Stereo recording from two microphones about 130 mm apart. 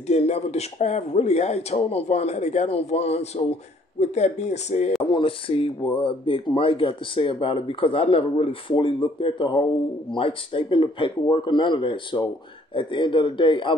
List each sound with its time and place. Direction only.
0.0 s speech: 55° left (ahead or behind)
5.1 s speech: 45° left (ahead or behind)